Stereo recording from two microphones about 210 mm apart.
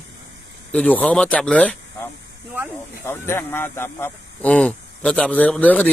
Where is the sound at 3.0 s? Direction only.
10° left (ahead or behind).